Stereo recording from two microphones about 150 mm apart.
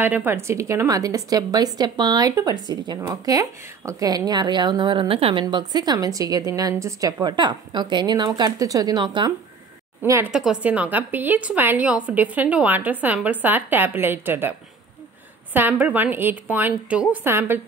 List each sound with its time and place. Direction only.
0.0 s a woman's voice: 10° right (ahead or behind); by 9.3 s 30° right (ahead or behind)
10.0 s a woman's voice: 20° right (ahead or behind)
10.3 s a woman's voice: 5° right (ahead or behind)
15.5 s a woman's voice: 10° right (ahead or behind)